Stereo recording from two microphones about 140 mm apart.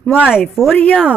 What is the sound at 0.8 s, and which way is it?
Speech, 10° left (ahead or behind).